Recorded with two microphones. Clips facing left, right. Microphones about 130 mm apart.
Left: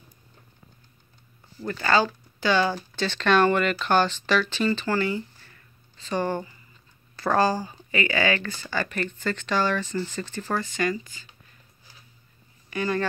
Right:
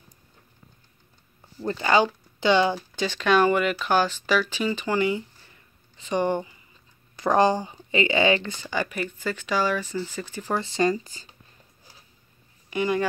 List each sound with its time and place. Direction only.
1.6 s speech: 20° right (ahead or behind)
10.6 s speech: 30° right (ahead or behind)
12.6 s speech: 20° right (ahead or behind)